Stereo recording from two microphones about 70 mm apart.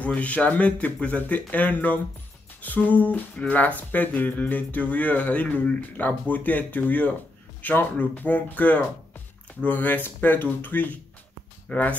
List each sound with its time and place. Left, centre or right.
0.0 s speech: centre